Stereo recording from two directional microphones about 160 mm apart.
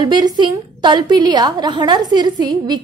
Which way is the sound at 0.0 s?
25° right (ahead or behind).